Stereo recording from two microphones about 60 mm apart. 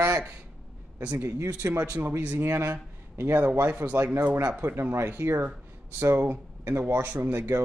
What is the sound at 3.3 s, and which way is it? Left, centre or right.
Speech, right.